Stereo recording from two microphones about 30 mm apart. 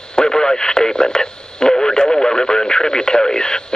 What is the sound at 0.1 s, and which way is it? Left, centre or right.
Speech, left.